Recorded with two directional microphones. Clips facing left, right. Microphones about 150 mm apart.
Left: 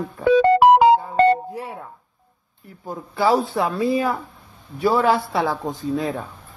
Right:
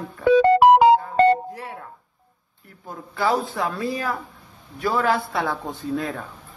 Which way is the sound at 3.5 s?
30° left (ahead or behind).